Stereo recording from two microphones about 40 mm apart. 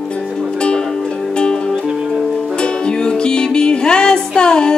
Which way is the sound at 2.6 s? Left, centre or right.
Left.